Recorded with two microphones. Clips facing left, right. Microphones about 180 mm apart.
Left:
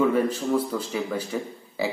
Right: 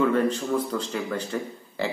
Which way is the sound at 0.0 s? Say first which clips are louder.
Even; 10° left (ahead or behind).